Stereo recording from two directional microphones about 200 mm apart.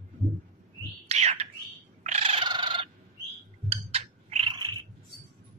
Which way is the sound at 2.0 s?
30° right (ahead or behind).